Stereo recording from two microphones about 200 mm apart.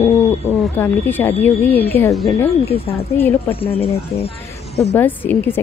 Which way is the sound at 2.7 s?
30° left (ahead or behind).